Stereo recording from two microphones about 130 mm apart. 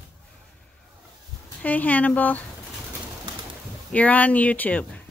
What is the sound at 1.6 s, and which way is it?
Speech, 10° left (ahead or behind).